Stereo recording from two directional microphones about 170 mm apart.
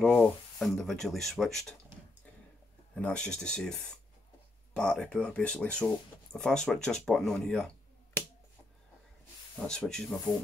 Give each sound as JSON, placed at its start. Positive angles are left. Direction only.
{"t": 0.0, "sound": "speech", "side_deg": 0}
{"t": 2.9, "sound": "speech", "side_deg": 5}
{"t": 9.6, "sound": "speech", "side_deg": 5}